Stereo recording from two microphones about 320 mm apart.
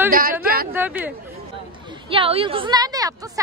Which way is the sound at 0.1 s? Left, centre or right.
Right.